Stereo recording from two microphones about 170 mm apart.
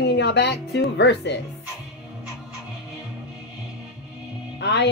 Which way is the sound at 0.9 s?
90° left.